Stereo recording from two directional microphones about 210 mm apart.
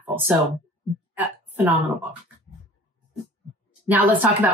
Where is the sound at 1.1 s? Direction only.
10° right (ahead or behind).